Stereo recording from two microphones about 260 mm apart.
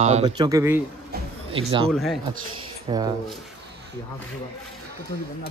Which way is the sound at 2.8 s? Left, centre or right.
Centre.